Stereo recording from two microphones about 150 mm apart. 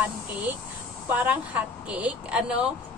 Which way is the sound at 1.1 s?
10° right (ahead or behind).